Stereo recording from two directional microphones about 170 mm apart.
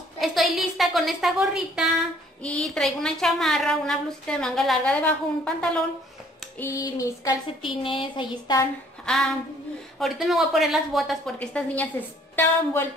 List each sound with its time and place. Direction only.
0.2 s a woman's voice: centre (ahead or behind)
6.6 s speech: 20° left (ahead or behind)
9.0 s a sound: centre (ahead or behind)
9.9 s a woman's voice: centre (ahead or behind)